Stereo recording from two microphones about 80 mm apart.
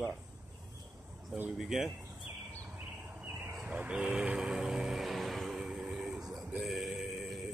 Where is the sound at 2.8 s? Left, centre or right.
Centre.